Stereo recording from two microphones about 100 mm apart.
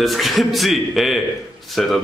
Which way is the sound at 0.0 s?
Centre (ahead or behind).